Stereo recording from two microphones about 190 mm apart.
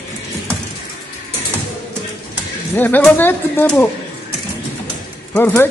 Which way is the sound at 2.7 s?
10° left (ahead or behind).